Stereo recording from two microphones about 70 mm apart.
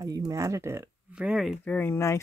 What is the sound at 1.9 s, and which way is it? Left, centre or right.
Speech, left.